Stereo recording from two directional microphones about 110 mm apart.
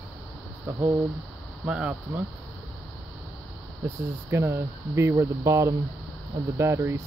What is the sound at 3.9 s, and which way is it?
Speech, 25° right (ahead or behind).